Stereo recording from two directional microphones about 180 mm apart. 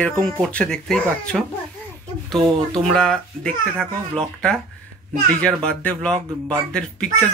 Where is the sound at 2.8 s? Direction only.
5° left (ahead or behind).